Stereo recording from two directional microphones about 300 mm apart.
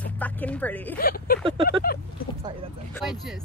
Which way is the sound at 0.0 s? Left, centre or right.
Centre.